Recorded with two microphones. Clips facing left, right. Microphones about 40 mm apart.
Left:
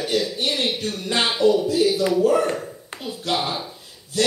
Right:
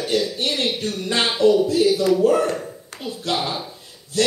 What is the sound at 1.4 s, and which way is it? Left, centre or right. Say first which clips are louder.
Speech: right 2 dB; right.